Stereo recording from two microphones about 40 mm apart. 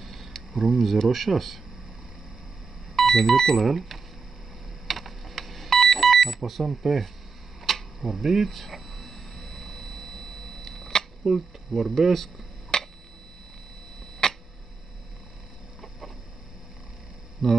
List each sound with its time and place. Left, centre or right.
0.0 s speech: centre
3.0 s speech: centre
4.8 s beep: centre
7.6 s a sound: centre
10.8 s camera: centre
11.2 s speech: centre
12.7 s finger snapping: centre
14.2 s a sound: centre
17.4 s speech: centre